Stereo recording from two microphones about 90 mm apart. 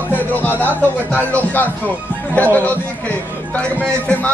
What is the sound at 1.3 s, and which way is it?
A man's voice, 20° left (ahead or behind).